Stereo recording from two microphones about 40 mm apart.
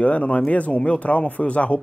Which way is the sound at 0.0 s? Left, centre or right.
Left.